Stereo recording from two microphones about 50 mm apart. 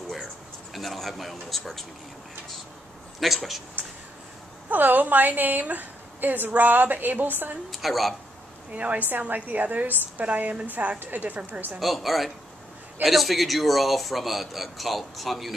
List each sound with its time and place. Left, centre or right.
0.7 s speech: centre
3.2 s speech: centre
4.6 s a woman's voice: right
7.7 s speech: centre
8.7 s a woman's voice: right
11.0 s a woman's voice: right
11.8 s speech: centre